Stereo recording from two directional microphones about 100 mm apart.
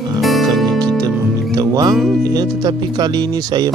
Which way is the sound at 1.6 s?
40° right (ahead or behind).